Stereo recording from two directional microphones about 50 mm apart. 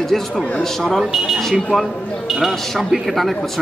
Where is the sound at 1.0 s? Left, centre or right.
Centre.